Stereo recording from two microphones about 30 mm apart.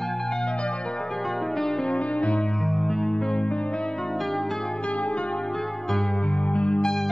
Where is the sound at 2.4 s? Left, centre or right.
Centre.